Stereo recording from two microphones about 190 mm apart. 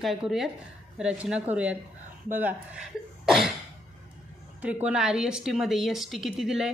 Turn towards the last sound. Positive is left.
turn(degrees=0)  # may be behind; listen again after turning